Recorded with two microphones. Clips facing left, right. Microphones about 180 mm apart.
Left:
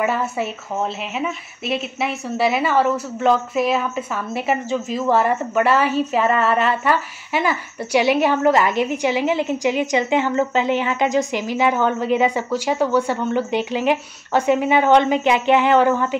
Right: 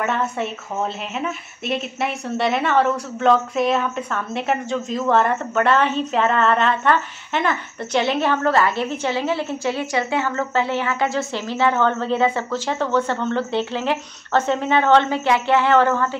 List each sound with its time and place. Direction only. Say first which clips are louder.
0.0 s speech: left 2 dB; 5° left (ahead or behind)